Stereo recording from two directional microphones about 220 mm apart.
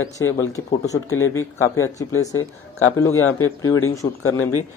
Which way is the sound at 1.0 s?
70° left (ahead or behind).